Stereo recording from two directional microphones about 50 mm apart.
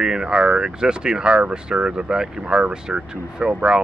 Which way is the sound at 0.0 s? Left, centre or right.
Centre.